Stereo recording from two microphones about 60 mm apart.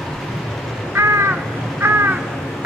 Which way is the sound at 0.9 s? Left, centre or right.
Right.